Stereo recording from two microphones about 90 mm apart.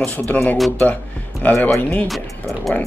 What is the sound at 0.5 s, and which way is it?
Speech, centre (ahead or behind).